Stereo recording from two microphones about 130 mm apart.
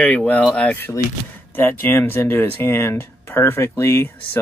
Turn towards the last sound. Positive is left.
turn(degrees=20)  # may be behind; listen again after turning